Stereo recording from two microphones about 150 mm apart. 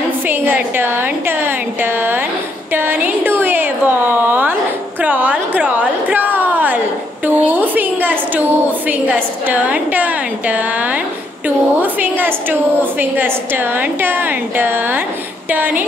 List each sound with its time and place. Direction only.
0.3 s a woman's voice: 15° right (ahead or behind)
2.7 s a sound: 15° right (ahead or behind)
7.2 s a woman's voice: 10° right (ahead or behind)